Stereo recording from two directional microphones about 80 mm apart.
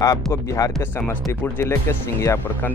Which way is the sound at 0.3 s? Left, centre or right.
Left.